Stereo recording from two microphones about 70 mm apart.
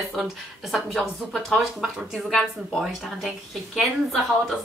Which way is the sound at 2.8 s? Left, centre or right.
Centre.